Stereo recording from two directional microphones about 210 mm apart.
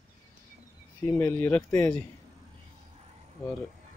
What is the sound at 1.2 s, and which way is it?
Speech, 10° left (ahead or behind).